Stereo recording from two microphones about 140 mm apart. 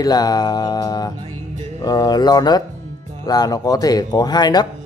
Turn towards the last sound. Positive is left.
turn(degrees=30)  # may be behind; listen again after turning